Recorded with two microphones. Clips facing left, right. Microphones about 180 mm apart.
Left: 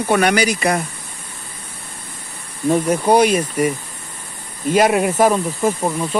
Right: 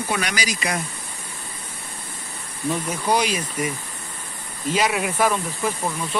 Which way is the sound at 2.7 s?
50° left (ahead or behind).